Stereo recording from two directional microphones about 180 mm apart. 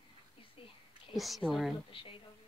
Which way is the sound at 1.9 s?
30° left (ahead or behind).